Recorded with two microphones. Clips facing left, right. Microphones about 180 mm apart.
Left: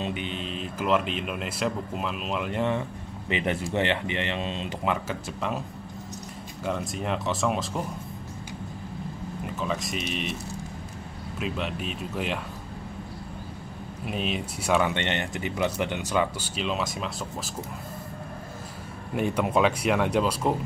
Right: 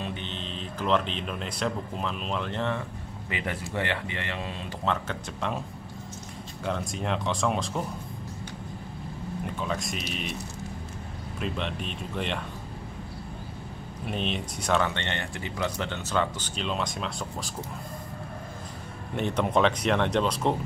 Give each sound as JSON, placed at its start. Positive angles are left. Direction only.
{"t": 0.0, "sound": "speech", "side_deg": 10}
{"t": 4.8, "sound": "speech", "side_deg": 5}
{"t": 6.6, "sound": "speech", "side_deg": 5}
{"t": 9.6, "sound": "speech", "side_deg": 0}
{"t": 11.3, "sound": "speech", "side_deg": 5}
{"t": 14.0, "sound": "speech", "side_deg": 5}
{"t": 19.1, "sound": "speech", "side_deg": 5}